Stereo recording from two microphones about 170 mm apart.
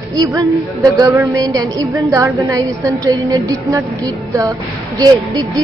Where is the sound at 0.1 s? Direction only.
20° right (ahead or behind).